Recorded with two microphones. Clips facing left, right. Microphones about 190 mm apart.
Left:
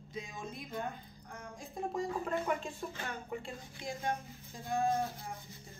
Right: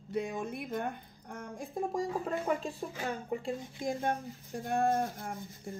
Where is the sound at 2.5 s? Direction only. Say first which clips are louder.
Right 3 dB; 35° right (ahead or behind).